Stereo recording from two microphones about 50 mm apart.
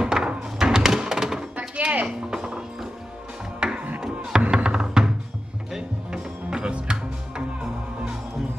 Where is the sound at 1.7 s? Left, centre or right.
Right.